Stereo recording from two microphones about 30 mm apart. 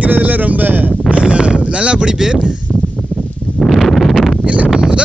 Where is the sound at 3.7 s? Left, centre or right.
Centre.